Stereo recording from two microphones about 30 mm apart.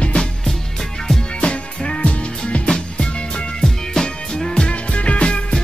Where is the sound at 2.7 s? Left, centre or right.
Left.